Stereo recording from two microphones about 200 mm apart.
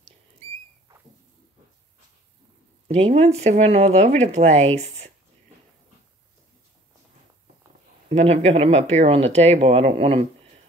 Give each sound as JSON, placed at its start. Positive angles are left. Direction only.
{"t": 2.9, "sound": "speech", "side_deg": -30}
{"t": 8.1, "sound": "speech", "side_deg": -30}